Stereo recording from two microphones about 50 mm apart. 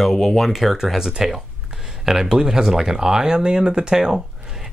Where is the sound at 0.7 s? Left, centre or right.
Centre.